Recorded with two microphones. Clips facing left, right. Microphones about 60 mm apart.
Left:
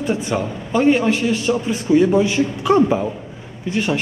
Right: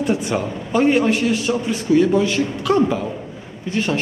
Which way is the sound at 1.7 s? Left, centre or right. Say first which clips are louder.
Left 1 dB; centre.